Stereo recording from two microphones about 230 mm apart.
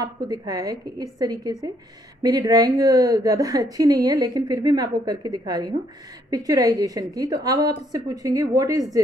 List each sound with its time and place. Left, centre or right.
0.0 s a woman's voice: centre